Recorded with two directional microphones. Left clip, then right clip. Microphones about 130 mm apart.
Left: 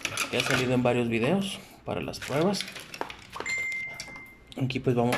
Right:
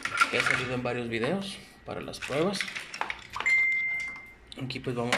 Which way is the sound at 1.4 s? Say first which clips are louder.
Left 4 dB; 20° left (ahead or behind).